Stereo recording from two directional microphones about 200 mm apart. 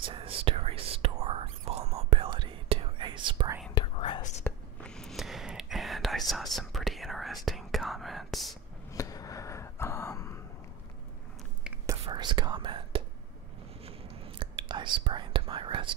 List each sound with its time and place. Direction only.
0.0 s whispering: 25° right (ahead or behind)
3.7 s whispering: 25° left (ahead or behind)
4.4 s whispering: 5° left (ahead or behind)
8.9 s a sound: 15° left (ahead or behind)
11.8 s whispering: 20° right (ahead or behind)